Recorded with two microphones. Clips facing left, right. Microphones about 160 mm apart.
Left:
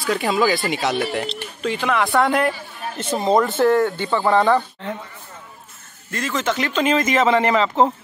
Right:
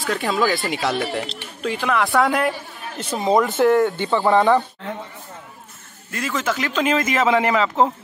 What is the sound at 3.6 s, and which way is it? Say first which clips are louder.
Speech: right 1 dB; 20° right (ahead or behind).